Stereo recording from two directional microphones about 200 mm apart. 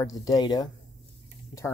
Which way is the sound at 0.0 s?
20° left (ahead or behind).